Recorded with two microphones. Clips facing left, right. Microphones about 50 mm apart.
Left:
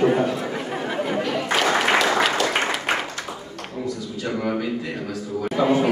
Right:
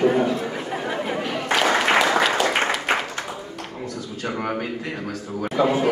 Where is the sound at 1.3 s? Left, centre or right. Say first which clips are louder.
Right 2 dB; centre.